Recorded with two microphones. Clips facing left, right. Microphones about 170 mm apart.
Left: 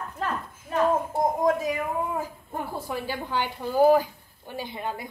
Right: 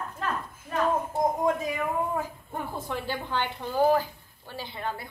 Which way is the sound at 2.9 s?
10° left (ahead or behind).